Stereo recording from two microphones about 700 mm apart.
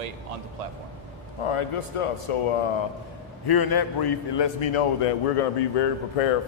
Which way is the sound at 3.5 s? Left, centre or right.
Left.